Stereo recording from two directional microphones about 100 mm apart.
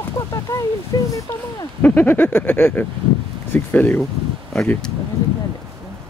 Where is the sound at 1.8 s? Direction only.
15° left (ahead or behind).